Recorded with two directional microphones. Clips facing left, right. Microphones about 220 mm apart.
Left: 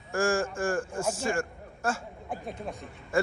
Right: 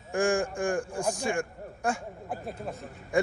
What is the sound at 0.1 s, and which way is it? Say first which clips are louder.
Speech: right 1 dB; 15° right (ahead or behind).